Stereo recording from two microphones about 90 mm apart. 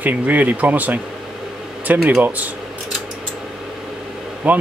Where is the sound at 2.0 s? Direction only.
15° right (ahead or behind).